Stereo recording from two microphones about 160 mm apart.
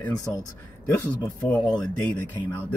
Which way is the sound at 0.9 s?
10° left (ahead or behind).